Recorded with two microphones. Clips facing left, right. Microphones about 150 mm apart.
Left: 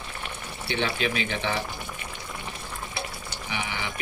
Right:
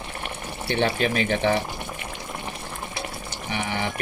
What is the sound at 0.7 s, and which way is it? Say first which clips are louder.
Speech: right 5 dB; 45° right (ahead or behind).